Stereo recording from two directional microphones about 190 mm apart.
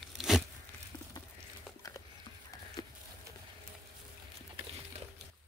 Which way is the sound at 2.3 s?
25° left (ahead or behind).